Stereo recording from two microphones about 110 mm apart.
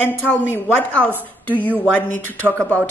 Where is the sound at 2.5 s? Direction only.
25° right (ahead or behind).